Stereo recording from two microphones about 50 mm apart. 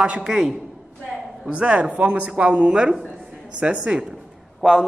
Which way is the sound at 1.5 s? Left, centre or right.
Right.